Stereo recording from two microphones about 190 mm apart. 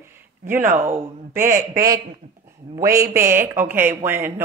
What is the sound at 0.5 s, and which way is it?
Speech, 10° right (ahead or behind).